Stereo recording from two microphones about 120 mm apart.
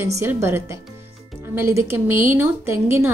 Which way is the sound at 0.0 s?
20° right (ahead or behind).